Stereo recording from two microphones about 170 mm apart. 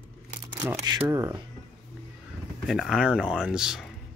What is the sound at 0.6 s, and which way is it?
Speech, 20° right (ahead or behind).